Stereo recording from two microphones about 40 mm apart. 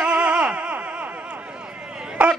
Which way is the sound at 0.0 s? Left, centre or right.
Right.